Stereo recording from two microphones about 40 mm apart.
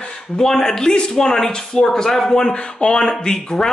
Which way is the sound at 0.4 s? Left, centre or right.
Centre.